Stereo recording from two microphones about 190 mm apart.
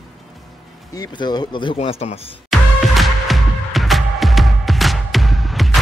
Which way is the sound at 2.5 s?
Centre (ahead or behind).